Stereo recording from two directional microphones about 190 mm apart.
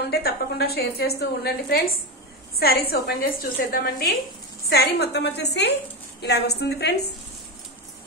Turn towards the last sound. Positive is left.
turn(degrees=60)  # may be behind; listen again after turning